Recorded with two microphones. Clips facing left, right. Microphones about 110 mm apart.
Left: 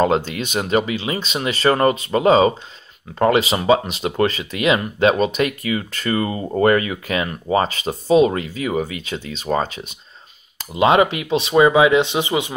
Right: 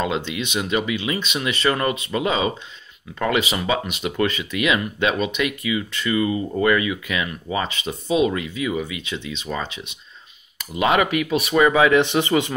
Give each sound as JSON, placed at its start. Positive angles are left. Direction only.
{"t": 0.0, "sound": "speech", "side_deg": 40}
{"t": 10.7, "sound": "speech", "side_deg": 30}